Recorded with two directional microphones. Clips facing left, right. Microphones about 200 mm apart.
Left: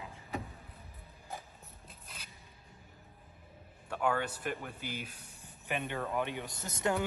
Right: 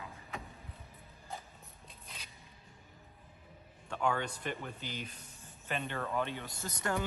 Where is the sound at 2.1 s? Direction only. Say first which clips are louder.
Even; centre (ahead or behind).